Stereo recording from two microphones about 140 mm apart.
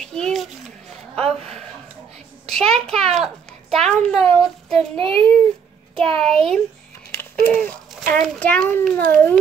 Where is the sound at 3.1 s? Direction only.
Centre (ahead or behind).